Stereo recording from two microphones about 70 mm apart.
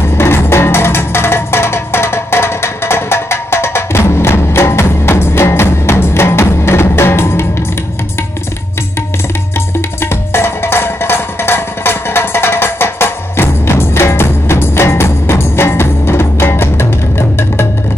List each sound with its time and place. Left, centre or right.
0.2 s music: left
10.3 s music: left